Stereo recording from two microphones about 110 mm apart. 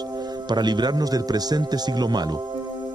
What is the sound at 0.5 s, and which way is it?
A man's voice, 40° right (ahead or behind).